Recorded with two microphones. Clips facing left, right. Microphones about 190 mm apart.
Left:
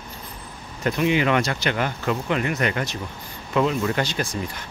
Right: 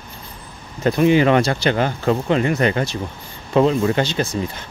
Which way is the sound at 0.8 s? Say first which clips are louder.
Right 6 dB; 35° right (ahead or behind).